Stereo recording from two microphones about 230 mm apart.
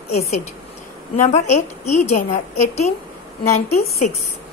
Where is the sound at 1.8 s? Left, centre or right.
Left.